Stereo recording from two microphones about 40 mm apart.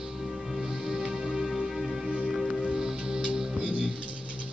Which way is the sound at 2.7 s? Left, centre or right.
Centre.